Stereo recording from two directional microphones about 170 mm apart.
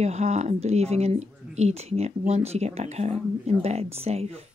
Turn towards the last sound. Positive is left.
turn(degrees=-35)  # may be behind; listen again after turning